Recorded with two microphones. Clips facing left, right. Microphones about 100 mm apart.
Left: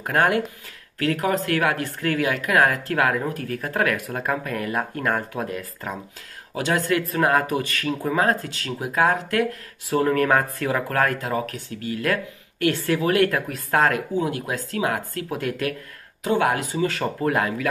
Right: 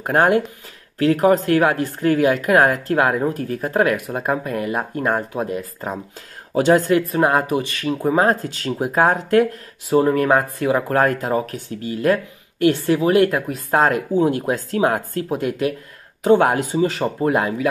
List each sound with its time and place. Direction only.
0.0 s speech: 30° right (ahead or behind)
8.0 s speech: 30° right (ahead or behind)